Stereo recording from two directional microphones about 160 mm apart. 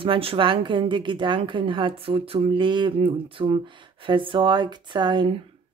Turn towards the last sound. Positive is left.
turn(degrees=-35)  # may be behind; listen again after turning